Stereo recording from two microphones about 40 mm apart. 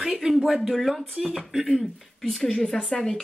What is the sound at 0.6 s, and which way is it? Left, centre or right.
Speech, centre.